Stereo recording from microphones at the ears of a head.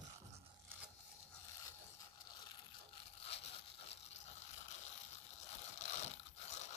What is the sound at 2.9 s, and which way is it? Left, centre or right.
Tearing, left.